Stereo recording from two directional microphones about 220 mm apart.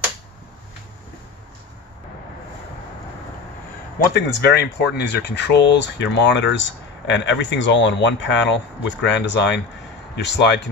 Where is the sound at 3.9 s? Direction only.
50° left (ahead or behind).